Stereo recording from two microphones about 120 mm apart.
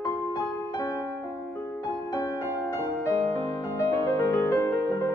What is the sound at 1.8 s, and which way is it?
Music, 30° left (ahead or behind).